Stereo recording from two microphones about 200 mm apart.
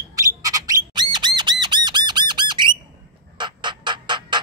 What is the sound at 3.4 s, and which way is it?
Bird, 25° right (ahead or behind).